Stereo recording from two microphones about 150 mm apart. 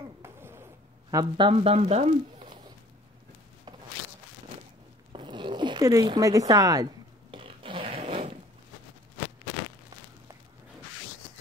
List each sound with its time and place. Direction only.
0.2 s a sound: 15° right (ahead or behind)
1.1 s speech: 35° right (ahead or behind)
5.1 s zipper: 30° right (ahead or behind)
7.2 s fart: 35° right (ahead or behind)